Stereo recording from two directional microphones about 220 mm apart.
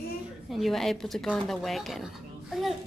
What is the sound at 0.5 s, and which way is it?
Speech, centre (ahead or behind).